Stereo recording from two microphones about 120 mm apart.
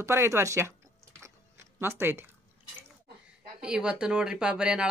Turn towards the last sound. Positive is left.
turn(degrees=-5)  # may be behind; listen again after turning